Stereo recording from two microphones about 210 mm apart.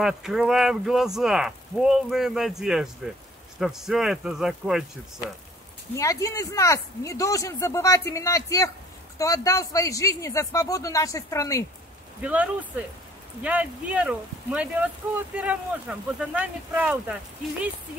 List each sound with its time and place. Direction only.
0.0 s speech: centre (ahead or behind)
5.9 s speech: 15° left (ahead or behind)
12.2 s speech: 5° right (ahead or behind)